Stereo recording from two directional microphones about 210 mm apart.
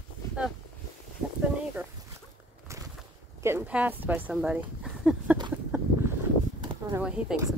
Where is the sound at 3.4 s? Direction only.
10° right (ahead or behind).